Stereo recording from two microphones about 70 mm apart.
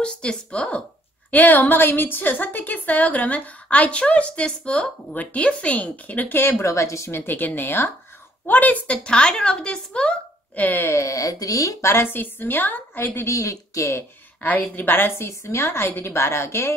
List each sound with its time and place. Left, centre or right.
0.0 s a woman's voice: centre; by 6.5 s left
6.6 s speech: left
7.2 s a woman's voice: left
10.9 s speech: left
11.9 s a woman's voice: left
13.3 s speech: left
14.4 s a woman's voice: left